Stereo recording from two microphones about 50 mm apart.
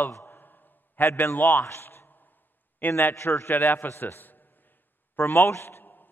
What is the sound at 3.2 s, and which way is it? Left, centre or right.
Speech, left.